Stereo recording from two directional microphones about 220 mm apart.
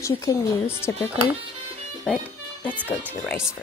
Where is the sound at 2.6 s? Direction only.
5° left (ahead or behind).